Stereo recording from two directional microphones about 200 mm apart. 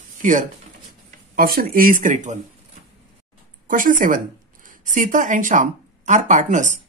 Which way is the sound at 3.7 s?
40° right (ahead or behind).